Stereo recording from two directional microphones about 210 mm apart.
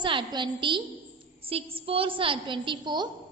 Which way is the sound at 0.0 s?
20° right (ahead or behind).